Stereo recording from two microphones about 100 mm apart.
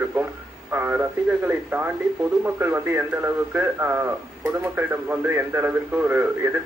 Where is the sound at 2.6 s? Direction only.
25° right (ahead or behind).